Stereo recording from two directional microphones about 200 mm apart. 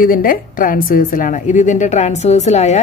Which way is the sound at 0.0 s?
45° left (ahead or behind).